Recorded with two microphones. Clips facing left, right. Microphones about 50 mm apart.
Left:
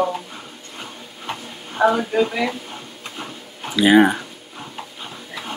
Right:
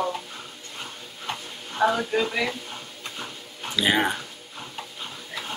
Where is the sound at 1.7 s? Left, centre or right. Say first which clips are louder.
Left 5 dB; centre.